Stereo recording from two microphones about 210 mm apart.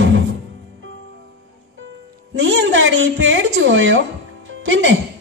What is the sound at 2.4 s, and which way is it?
A woman's voice, 65° right (ahead or behind).